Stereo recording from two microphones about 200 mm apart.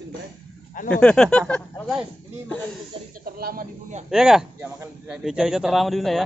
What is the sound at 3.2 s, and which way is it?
Speech, 45° right (ahead or behind).